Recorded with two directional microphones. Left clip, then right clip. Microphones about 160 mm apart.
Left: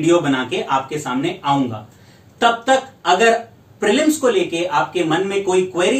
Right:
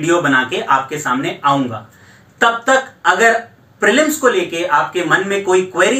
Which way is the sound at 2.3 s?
20° left (ahead or behind).